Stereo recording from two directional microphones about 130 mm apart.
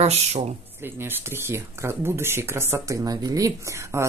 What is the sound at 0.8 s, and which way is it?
Speech, 15° right (ahead or behind).